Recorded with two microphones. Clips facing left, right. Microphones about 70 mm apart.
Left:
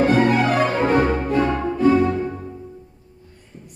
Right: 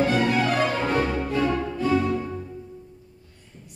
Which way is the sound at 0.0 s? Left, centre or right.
Left.